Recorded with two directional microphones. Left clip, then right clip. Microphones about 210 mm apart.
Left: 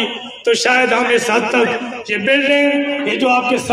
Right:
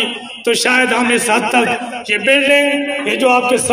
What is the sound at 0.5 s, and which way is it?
A man's voice, 55° right (ahead or behind).